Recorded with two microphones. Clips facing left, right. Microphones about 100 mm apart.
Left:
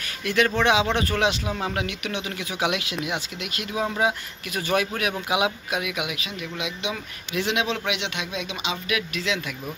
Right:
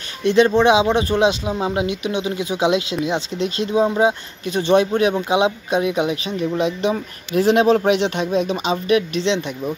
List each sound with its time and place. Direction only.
0.2 s speech: 25° right (ahead or behind)